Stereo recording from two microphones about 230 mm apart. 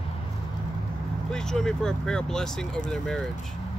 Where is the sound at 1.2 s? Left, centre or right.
Centre.